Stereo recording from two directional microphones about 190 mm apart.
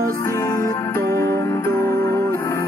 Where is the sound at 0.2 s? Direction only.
20° left (ahead or behind).